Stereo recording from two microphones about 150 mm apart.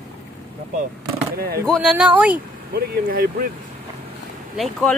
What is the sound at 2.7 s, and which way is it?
Speech, 85° right.